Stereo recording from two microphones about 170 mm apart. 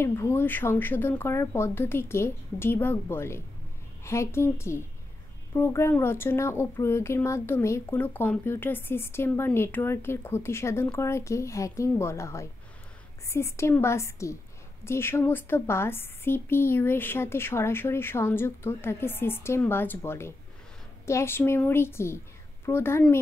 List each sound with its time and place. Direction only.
0.0 s a woman's voice: 15° left (ahead or behind)